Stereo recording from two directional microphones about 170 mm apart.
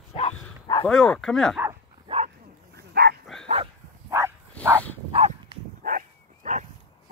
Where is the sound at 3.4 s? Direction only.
30° right (ahead or behind).